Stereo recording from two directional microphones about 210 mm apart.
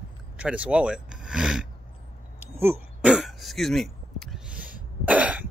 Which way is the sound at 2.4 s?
10° right (ahead or behind).